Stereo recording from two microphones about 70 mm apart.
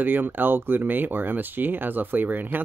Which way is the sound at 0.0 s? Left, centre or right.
Right.